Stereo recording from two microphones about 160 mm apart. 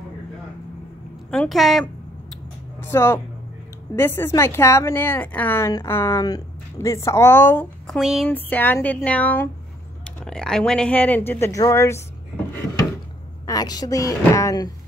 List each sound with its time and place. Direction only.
1.3 s a woman's voice: centre (ahead or behind)
2.8 s speech: 15° left (ahead or behind); by 8.3 s centre (ahead or behind)
8.3 s speech: 10° left (ahead or behind)
13.5 s speech: 25° left (ahead or behind)